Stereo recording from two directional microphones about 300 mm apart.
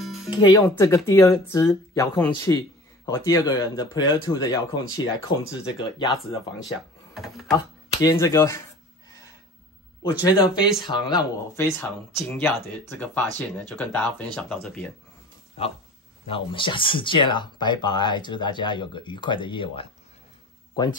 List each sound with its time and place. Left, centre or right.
0.0 s music: centre
0.3 s speech: centre
7.2 s speech: centre
7.5 s speech: centre
10.2 s speech: centre
15.6 s speech: centre